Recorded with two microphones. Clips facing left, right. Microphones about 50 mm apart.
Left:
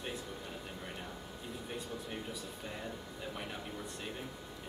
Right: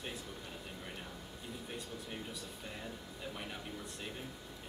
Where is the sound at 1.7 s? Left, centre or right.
Centre.